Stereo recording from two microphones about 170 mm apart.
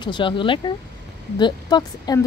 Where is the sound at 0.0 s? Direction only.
30° left (ahead or behind).